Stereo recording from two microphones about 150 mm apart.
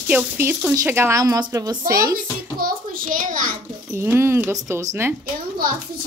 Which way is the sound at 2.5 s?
70° right (ahead or behind).